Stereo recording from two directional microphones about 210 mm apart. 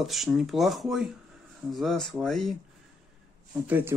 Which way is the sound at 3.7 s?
10° right (ahead or behind).